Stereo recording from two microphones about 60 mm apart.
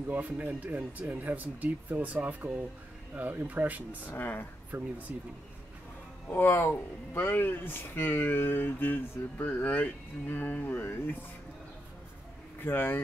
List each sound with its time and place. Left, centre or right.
0.1 s speech: right
4.1 s speech: left
4.6 s speech: right
6.3 s speech: left
12.6 s speech: left